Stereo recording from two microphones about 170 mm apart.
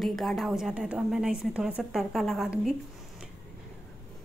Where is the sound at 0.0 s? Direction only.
Centre (ahead or behind).